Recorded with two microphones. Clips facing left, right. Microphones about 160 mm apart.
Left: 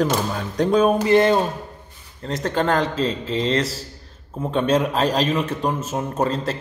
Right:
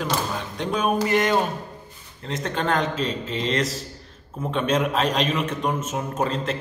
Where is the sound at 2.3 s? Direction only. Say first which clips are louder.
Left 4 dB; 35° left (ahead or behind).